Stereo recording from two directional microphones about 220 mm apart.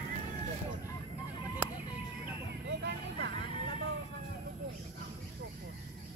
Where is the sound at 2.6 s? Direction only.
50° right (ahead or behind).